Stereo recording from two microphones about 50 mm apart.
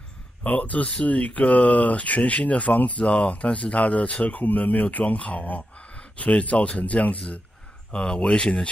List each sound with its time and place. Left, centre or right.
0.4 s speech: left